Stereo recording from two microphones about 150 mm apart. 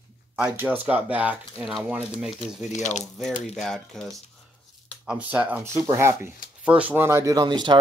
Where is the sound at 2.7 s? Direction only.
55° left (ahead or behind).